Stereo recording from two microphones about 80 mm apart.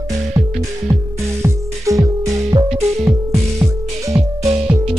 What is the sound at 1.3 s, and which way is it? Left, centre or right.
Music, right.